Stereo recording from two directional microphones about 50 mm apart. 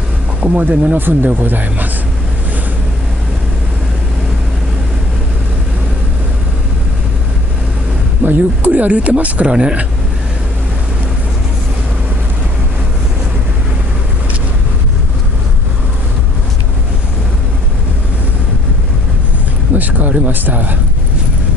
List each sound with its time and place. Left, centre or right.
0.4 s speech: right
8.3 s speech: right
19.8 s speech: right